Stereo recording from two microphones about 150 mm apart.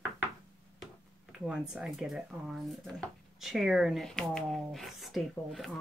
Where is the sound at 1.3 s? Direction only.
5° right (ahead or behind).